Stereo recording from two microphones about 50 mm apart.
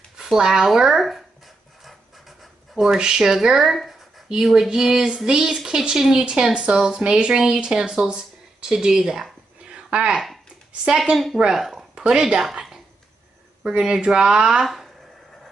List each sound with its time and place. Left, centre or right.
0.2 s speech: centre
1.9 s writing: centre
3.0 s a woman's voice: centre
9.7 s a sound: right
11.5 s speech: centre
11.9 s speech: centre
13.7 s a woman's voice: centre